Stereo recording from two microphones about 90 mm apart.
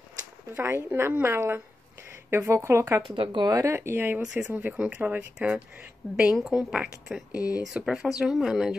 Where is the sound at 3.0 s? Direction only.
65° right (ahead or behind).